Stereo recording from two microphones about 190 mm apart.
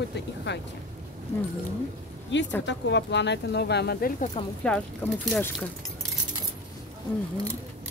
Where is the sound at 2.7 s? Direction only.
65° left (ahead or behind); by 4.2 s 50° left (ahead or behind).